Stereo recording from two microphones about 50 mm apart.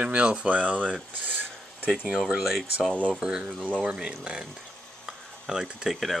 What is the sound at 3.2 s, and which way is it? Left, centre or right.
Speech, centre.